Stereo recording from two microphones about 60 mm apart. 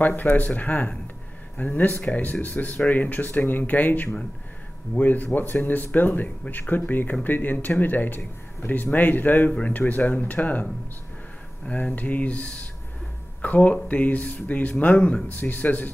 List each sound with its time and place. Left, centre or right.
0.0 s speech: left
15.3 s speech: left